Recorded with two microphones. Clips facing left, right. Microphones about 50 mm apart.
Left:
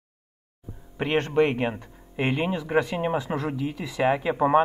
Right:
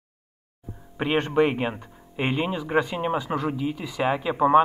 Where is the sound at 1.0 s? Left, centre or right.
Centre.